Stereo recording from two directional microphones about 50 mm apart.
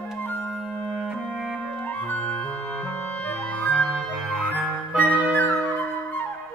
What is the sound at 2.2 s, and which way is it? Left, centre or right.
Music, left.